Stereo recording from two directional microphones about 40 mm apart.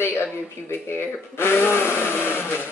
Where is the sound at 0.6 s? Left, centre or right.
Left.